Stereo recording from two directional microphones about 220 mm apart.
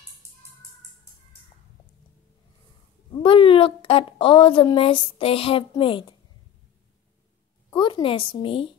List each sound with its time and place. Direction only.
3.1 s a woman's voice: 25° left (ahead or behind)
7.7 s a woman's voice: 20° left (ahead or behind)